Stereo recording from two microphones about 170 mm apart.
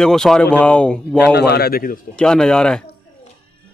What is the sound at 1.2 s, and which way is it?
Speech, 75° left (ahead or behind).